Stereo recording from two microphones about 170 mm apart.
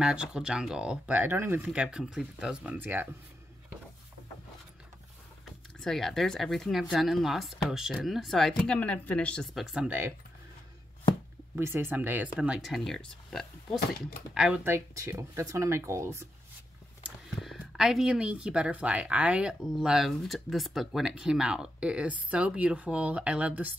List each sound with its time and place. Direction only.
0.0 s speech: 5° right (ahead or behind)
5.9 s speech: centre (ahead or behind)
11.5 s speech: 15° right (ahead or behind)
17.0 s speech: centre (ahead or behind)